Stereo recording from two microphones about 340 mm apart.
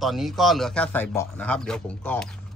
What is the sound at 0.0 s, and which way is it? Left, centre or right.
A man's voice, centre.